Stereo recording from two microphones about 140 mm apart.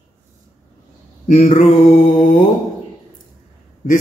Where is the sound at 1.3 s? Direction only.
50° left (ahead or behind).